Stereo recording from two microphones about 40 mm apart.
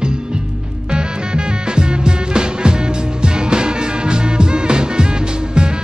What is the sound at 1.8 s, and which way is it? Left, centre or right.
Music, right.